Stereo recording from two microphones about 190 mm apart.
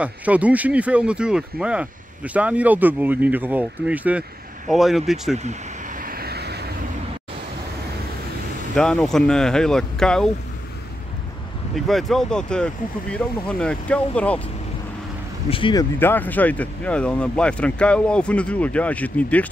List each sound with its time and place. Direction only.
0.0 s speech: 5° right (ahead or behind)
5.4 s vehicle: 40° right (ahead or behind); by 6.6 s 60° right (ahead or behind)
8.7 s speech: 5° left (ahead or behind)
11.7 s speech: centre (ahead or behind)
15.5 s speech: 25° left (ahead or behind)
16.0 s speech: 10° left (ahead or behind)